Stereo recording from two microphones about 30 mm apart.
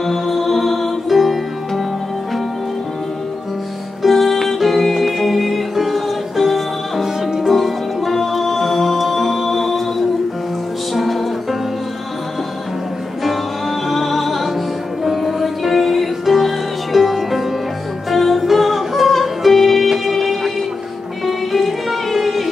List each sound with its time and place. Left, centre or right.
0.0 s music: centre
4.0 s music: centre
13.8 s music: centre